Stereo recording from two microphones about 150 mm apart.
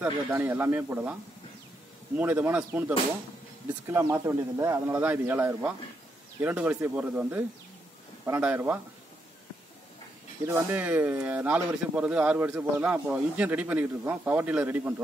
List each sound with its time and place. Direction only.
0.0 s speech: 15° right (ahead or behind)
2.1 s speech: 10° right (ahead or behind)
3.8 s speech: 20° right (ahead or behind)
10.4 s speech: 15° right (ahead or behind)